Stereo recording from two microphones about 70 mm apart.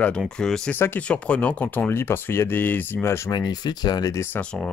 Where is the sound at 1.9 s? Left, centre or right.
Left.